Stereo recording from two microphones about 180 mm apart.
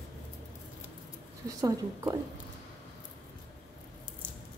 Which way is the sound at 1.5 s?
20° right (ahead or behind).